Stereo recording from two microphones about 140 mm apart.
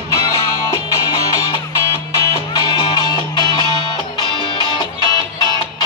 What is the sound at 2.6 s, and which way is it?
Music, 30° left (ahead or behind).